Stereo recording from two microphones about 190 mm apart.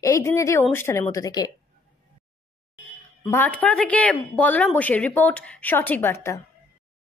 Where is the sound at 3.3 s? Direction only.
10° left (ahead or behind).